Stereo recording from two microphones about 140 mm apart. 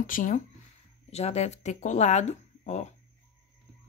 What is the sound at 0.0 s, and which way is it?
Speech, 70° left (ahead or behind).